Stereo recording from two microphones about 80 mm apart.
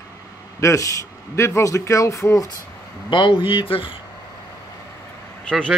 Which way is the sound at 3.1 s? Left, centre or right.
Left.